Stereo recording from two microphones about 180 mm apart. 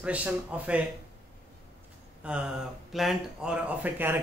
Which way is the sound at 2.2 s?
5° right (ahead or behind).